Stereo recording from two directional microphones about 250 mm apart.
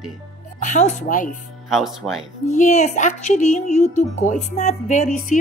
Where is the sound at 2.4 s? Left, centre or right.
Left.